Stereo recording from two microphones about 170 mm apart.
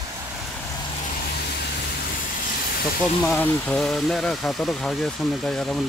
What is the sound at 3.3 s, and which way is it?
Speech, 5° left (ahead or behind).